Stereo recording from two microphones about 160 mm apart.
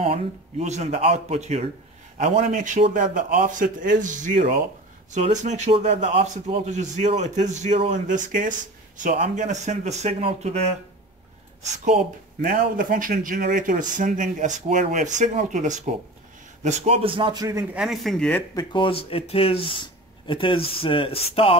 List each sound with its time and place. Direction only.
0.0 s a man's voice: 40° right (ahead or behind)
11.6 s a man's voice: 50° right (ahead or behind); by 17.6 s 20° right (ahead or behind)
17.7 s speech: centre (ahead or behind)
18.5 s speech: 25° left (ahead or behind)